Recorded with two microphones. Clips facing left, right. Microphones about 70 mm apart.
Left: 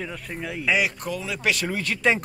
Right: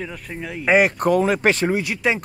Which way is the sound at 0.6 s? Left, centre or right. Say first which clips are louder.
Right 8 dB; right.